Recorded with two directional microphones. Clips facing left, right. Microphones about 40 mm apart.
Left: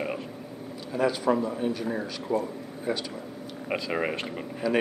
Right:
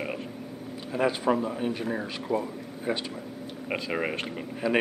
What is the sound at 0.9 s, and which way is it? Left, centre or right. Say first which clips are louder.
Speech: left 1 dB; right.